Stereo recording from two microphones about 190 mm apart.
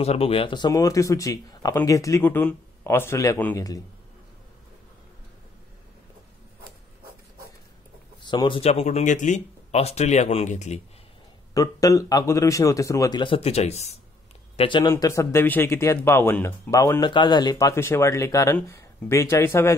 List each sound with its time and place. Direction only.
0.0 s a man's voice: 30° left (ahead or behind); by 3.6 s 10° left (ahead or behind)
8.2 s speech: 25° left (ahead or behind)
11.5 s a man's voice: 15° left (ahead or behind); by 13.9 s 35° left (ahead or behind)
14.6 s a man's voice: 25° left (ahead or behind)